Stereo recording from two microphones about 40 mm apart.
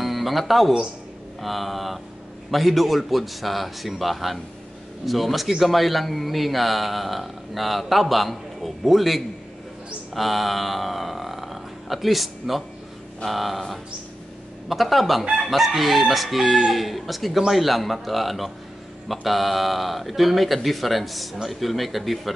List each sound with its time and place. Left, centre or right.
0.0 s a man's voice: centre